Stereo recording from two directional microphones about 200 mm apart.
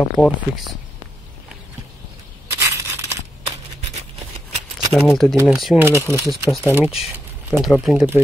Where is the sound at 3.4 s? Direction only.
30° right (ahead or behind).